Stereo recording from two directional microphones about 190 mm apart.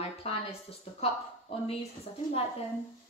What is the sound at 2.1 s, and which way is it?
Speech, 35° left (ahead or behind).